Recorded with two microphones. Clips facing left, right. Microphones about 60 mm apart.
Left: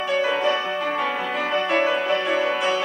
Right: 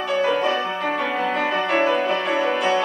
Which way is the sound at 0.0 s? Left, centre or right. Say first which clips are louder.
Right 1 dB; centre.